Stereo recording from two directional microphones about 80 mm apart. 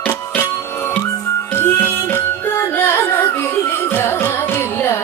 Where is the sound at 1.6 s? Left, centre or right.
Left.